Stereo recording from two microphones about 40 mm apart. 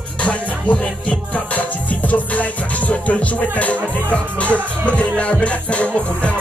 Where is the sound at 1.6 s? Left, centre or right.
Left.